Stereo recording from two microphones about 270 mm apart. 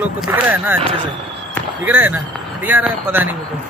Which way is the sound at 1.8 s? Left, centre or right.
Centre.